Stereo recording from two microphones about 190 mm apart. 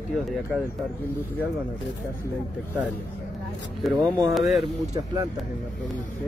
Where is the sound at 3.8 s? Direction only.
Centre (ahead or behind).